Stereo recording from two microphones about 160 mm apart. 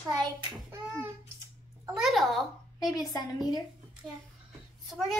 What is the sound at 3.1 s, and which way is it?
Speech, 25° left (ahead or behind).